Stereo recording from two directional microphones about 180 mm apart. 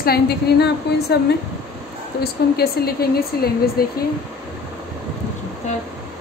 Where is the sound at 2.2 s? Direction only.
60° left (ahead or behind).